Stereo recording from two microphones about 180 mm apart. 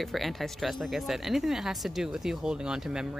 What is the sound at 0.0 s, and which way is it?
Speech, centre (ahead or behind).